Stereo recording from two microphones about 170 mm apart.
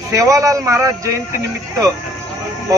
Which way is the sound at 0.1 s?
20° right (ahead or behind).